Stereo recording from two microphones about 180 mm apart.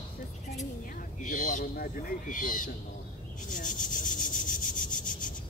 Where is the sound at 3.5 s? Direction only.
45° left (ahead or behind).